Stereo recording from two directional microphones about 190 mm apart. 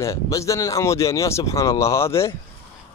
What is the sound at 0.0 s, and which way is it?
Speech, 15° left (ahead or behind).